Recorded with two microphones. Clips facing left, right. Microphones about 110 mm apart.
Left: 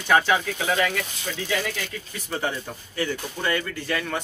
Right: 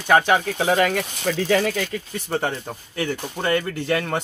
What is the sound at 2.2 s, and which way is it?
Speech, 65° right (ahead or behind).